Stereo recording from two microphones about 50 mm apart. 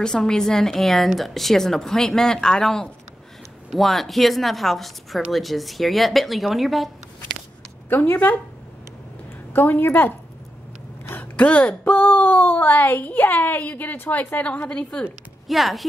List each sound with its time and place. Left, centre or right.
0.0 s a woman's voice: centre
7.9 s a woman's voice: left
9.5 s a woman's voice: left
11.3 s a woman's voice: left
15.4 s speech: centre